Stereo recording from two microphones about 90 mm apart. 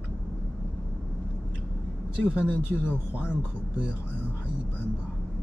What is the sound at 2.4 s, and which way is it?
Speech, 15° right (ahead or behind).